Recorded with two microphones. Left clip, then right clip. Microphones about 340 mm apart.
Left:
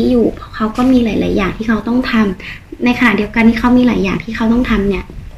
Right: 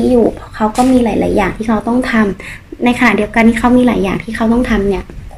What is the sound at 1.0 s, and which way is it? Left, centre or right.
A woman's voice, centre.